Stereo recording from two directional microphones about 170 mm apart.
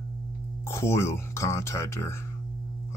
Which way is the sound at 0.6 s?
15° left (ahead or behind).